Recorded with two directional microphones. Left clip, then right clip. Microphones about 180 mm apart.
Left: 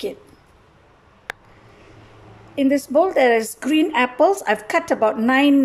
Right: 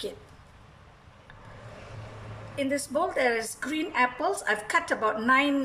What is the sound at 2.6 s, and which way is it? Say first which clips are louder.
A woman's voice: left 11 dB; 35° left (ahead or behind).